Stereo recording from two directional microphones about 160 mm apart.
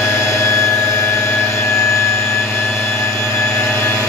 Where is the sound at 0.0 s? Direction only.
15° left (ahead or behind).